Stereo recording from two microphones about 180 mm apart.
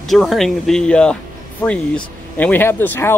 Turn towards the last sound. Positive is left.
turn(degrees=10)  # may be behind; listen again after turning